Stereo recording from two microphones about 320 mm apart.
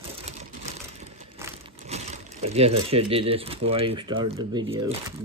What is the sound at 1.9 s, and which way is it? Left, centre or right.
Speech, centre.